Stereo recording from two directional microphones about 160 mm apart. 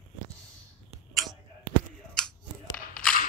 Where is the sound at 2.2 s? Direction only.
5° left (ahead or behind).